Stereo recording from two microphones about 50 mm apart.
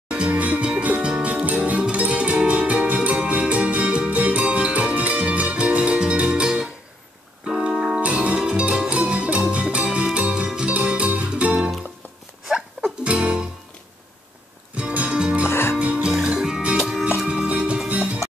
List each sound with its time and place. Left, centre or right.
0.1 s music: right
8.0 s music: right
12.4 s a sound: centre
13.0 s music: right
14.8 s music: centre
17.3 s music: right